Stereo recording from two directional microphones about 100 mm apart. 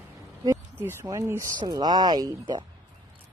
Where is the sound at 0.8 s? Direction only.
25° right (ahead or behind).